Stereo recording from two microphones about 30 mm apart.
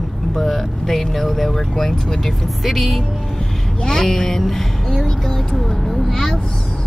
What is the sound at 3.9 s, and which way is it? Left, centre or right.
Speech, centre.